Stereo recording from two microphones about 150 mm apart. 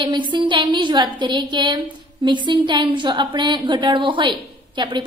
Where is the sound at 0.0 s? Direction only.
30° right (ahead or behind).